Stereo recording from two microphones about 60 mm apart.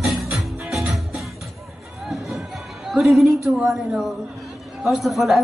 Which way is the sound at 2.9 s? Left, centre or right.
Centre.